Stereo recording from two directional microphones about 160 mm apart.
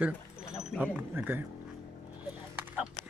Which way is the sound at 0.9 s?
10° right (ahead or behind).